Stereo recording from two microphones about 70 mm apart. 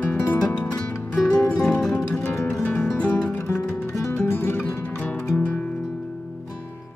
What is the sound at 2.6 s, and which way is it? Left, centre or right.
Music, left.